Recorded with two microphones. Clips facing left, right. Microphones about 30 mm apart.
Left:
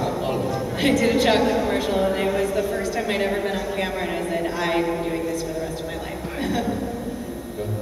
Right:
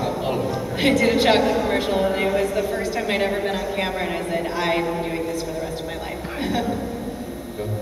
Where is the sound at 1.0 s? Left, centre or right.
Centre.